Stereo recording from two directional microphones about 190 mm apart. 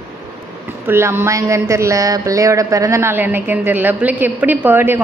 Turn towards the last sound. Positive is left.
turn(degrees=-10)  # may be behind; listen again after turning